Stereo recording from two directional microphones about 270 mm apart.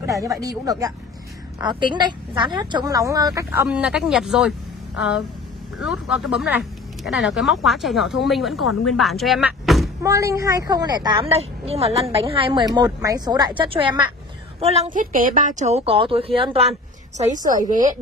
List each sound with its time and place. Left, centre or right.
0.0 s a woman's voice: centre; by 17.6 s right